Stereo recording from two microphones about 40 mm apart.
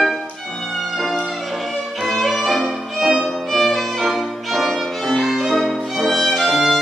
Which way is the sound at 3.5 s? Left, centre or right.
Centre.